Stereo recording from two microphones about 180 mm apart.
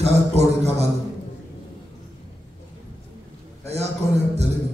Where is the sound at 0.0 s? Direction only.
35° right (ahead or behind).